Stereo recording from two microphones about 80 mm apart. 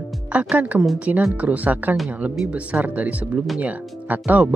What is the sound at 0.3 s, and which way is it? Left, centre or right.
Speech, centre.